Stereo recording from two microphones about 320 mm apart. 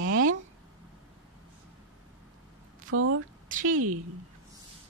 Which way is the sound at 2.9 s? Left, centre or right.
Right.